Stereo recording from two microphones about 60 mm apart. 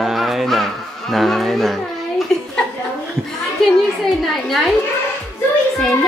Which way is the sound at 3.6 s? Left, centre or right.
Centre.